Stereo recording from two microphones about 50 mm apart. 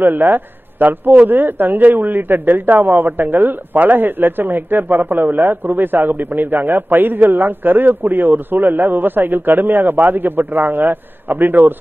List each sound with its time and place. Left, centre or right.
0.0 s a man's voice: right